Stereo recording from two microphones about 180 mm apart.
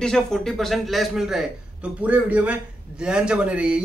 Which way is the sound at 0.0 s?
5° left (ahead or behind).